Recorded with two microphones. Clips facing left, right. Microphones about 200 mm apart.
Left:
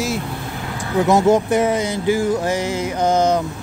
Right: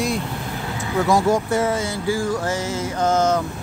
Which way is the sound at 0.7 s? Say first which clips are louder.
Left 3 dB; 20° left (ahead or behind).